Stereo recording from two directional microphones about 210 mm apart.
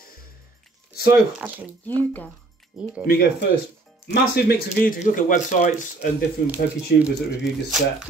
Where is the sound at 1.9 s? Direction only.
10° left (ahead or behind).